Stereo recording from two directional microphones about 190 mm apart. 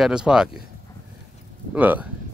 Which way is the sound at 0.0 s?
5° right (ahead or behind).